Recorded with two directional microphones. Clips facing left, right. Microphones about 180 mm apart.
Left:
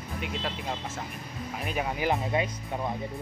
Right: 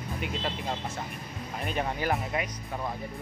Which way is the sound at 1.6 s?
5° left (ahead or behind).